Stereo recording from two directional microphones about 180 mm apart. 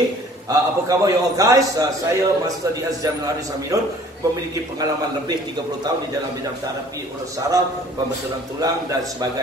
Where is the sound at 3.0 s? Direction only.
20° right (ahead or behind).